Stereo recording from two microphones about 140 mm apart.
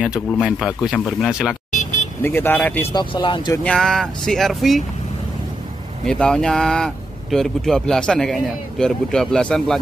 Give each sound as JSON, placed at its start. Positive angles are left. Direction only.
{"t": 0.0, "sound": "speech", "side_deg": -5}
{"t": 2.2, "sound": "speech", "side_deg": 15}
{"t": 2.9, "sound": "speech", "side_deg": 35}
{"t": 3.6, "sound": "speech", "side_deg": 5}
{"t": 6.0, "sound": "speech", "side_deg": 5}